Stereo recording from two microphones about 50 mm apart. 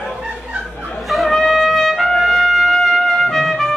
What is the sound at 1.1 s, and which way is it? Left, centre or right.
Trumpet, centre.